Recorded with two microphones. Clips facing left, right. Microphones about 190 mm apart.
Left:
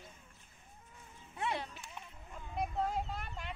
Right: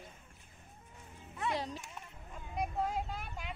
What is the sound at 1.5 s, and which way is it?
Music, 35° right (ahead or behind).